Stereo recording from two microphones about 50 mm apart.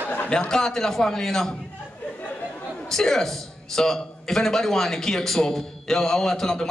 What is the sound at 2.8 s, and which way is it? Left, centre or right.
A man's voice, centre.